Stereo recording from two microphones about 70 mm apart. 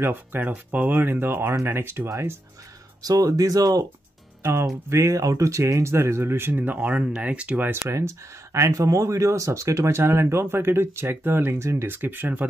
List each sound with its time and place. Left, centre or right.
0.0 s speech: right
3.0 s speech: right
4.4 s speech: right
8.5 s speech: right